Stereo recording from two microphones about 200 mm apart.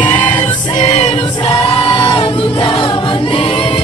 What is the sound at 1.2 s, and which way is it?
Choir, 25° left (ahead or behind).